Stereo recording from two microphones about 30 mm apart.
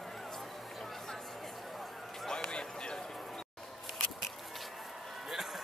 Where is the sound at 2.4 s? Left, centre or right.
Left.